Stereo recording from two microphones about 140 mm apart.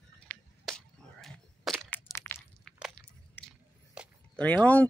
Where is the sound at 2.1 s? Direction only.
20° left (ahead or behind).